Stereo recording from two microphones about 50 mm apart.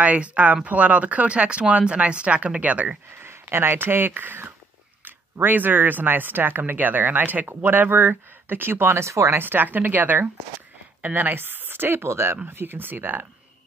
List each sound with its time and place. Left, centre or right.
0.0 s speech: right
3.2 s speech: right
9.3 s speech: right